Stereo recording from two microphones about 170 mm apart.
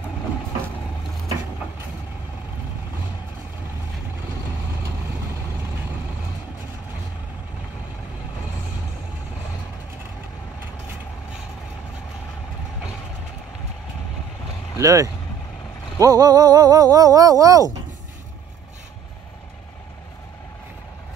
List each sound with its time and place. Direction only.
14.8 s speech: 20° right (ahead or behind)
16.0 s music: 20° right (ahead or behind)